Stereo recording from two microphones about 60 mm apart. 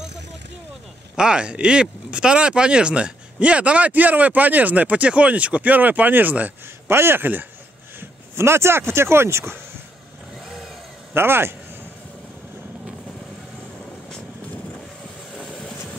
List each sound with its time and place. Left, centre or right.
1.1 s speech: centre
6.9 s speech: right
8.0 s speech: right
11.1 s speech: right